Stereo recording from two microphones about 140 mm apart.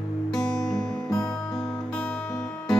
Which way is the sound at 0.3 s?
Centre (ahead or behind).